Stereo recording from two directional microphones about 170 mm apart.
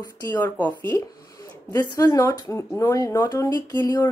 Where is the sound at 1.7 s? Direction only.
20° left (ahead or behind).